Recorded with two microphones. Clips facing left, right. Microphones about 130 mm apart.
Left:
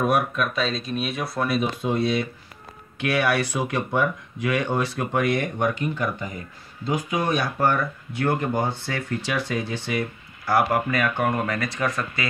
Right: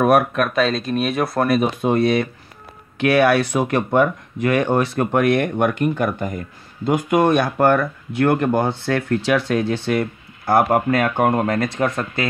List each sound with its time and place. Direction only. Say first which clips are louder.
0.0 s speech: right 6 dB; 60° right (ahead or behind)